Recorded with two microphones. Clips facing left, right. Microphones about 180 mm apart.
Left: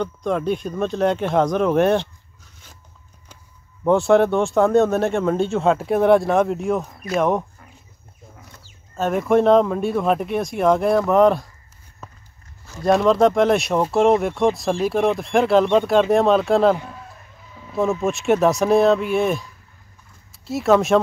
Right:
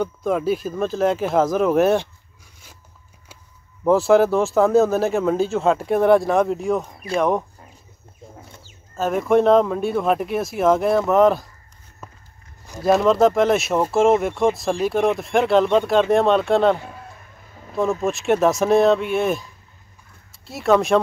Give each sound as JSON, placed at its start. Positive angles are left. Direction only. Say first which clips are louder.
{"t": 0.0, "sound": "speech", "louder": "right 1 dB", "side_deg": -5}
{"t": 3.8, "sound": "speech", "louder": "even", "side_deg": 0}
{"t": 8.4, "sound": "chicken", "louder": "right 3 dB", "side_deg": -25}
{"t": 8.9, "sound": "speech", "louder": "even", "side_deg": 0}
{"t": 12.8, "sound": "speech", "louder": "even", "side_deg": 0}
{"t": 18.0, "sound": "speech", "louder": "left 1 dB", "side_deg": 0}